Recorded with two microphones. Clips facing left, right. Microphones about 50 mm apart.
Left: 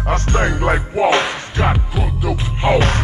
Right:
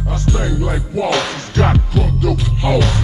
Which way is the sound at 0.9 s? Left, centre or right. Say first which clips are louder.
Left 1 dB; left.